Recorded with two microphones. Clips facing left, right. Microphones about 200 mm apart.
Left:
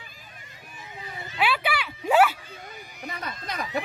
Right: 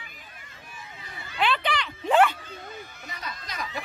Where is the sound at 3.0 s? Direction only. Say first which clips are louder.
Left 7 dB; 55° left (ahead or behind).